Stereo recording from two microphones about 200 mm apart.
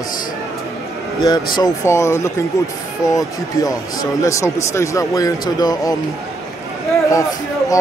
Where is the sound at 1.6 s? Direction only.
15° left (ahead or behind).